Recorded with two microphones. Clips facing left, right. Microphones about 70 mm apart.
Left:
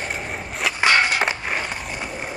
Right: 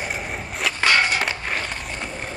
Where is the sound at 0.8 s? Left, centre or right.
Centre.